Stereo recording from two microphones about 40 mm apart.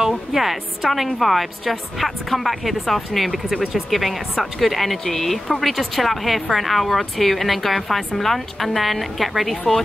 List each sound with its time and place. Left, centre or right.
0.3 s a woman's voice: centre